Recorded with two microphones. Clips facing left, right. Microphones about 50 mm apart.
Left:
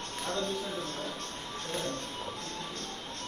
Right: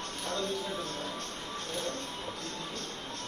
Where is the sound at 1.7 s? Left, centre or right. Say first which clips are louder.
Left 2 dB; left.